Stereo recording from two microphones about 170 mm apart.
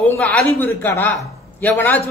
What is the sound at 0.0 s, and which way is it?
Speech, 10° left (ahead or behind).